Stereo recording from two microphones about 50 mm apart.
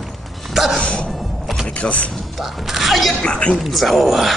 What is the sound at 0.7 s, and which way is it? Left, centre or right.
Music, left.